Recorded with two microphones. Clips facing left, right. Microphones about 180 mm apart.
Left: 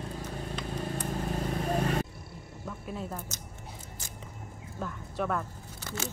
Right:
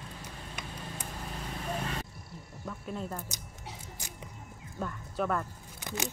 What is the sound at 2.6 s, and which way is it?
Cricket, 5° left (ahead or behind).